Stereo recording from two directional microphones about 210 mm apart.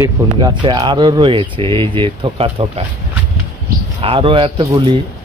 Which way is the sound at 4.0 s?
25° right (ahead or behind).